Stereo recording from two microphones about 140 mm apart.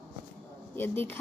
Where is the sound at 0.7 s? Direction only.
15° left (ahead or behind).